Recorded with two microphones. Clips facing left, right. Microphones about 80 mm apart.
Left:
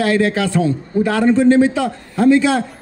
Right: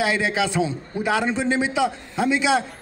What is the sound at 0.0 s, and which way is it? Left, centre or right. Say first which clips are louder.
A man's voice: left 6 dB; centre.